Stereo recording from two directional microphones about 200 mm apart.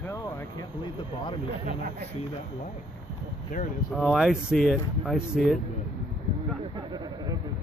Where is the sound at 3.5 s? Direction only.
40° left (ahead or behind).